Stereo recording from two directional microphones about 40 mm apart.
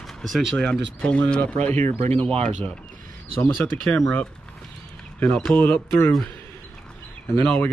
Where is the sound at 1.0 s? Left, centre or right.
Left.